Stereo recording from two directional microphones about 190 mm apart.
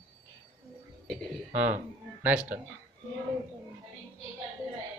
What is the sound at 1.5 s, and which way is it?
Speech, 10° right (ahead or behind).